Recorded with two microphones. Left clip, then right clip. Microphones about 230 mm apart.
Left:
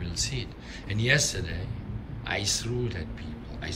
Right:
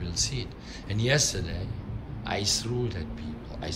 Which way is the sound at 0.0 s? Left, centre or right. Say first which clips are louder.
Right 1 dB; centre.